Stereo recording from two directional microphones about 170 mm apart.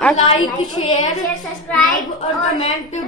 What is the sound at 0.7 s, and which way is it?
Speech, 25° left (ahead or behind).